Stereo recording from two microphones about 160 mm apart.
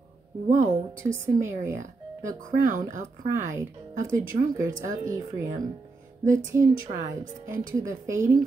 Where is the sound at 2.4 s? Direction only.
55° right (ahead or behind).